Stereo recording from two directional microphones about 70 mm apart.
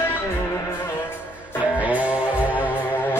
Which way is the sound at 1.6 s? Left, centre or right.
Right.